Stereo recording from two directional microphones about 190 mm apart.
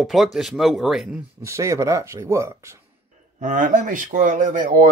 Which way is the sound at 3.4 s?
45° right (ahead or behind).